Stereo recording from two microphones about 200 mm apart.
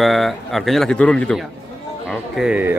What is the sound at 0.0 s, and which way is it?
Speech, centre (ahead or behind).